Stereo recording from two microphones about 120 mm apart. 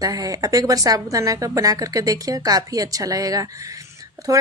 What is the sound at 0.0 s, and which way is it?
Speech, 30° right (ahead or behind).